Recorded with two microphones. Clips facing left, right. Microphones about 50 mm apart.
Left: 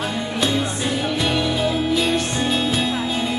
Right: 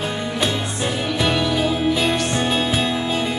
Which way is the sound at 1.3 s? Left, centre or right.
Centre.